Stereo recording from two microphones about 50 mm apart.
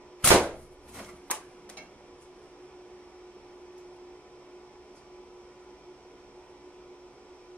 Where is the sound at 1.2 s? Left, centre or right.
Left.